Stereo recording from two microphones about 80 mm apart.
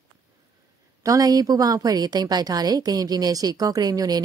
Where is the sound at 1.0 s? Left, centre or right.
Right.